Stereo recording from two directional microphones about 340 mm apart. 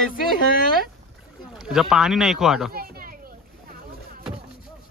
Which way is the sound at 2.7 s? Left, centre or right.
Right.